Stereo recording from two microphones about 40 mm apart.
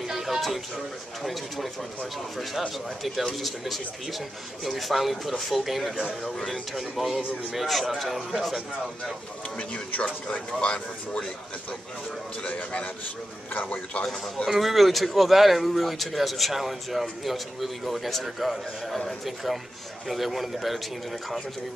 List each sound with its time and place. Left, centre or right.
0.0 s a sound: centre
1.2 s speech: centre
3.3 s speech: centre
6.2 s a man's voice: centre
6.7 s speech: centre
10.3 s speech: left
12.4 s speech: left
13.5 s a man's voice: left
14.0 s a man's voice: centre
14.5 s speech: centre